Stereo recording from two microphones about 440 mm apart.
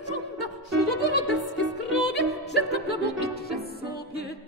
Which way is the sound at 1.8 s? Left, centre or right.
Left.